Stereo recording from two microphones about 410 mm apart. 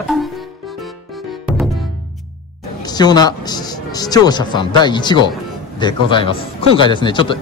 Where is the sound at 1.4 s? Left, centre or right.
Centre.